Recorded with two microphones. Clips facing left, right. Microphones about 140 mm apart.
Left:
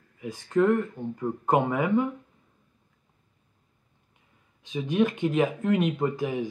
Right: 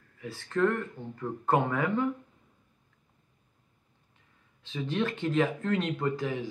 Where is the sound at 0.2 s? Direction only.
15° left (ahead or behind).